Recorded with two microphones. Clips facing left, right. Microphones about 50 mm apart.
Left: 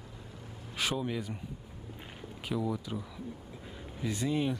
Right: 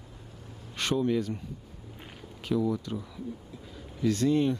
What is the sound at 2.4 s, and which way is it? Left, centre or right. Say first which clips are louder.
Speech: right 5 dB; centre.